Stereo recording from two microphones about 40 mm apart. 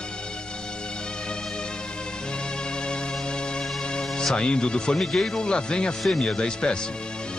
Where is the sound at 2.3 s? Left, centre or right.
Left.